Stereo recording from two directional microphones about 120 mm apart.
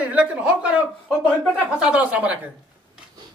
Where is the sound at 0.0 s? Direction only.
10° right (ahead or behind).